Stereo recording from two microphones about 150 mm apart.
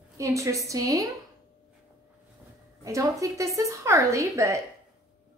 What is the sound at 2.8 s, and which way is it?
A woman's voice, 20° right (ahead or behind).